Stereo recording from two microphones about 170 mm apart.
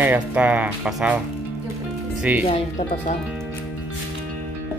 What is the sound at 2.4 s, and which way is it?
Speech, 40° left (ahead or behind).